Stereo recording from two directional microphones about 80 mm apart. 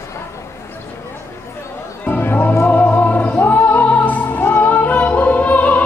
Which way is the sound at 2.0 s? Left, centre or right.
Left.